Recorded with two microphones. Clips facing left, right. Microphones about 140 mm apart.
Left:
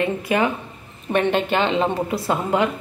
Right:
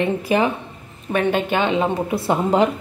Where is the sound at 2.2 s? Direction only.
30° right (ahead or behind).